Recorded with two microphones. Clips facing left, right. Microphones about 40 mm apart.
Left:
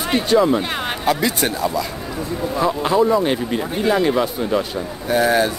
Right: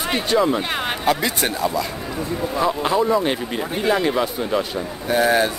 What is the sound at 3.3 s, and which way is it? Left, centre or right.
Speech, centre.